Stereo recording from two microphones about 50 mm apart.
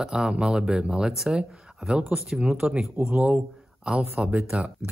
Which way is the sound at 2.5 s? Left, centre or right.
Right.